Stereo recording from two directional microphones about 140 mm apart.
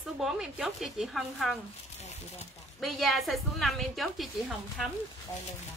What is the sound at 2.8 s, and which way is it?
A woman's voice, centre (ahead or behind).